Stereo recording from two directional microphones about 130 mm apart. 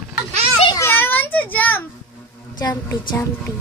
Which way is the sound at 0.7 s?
20° left (ahead or behind).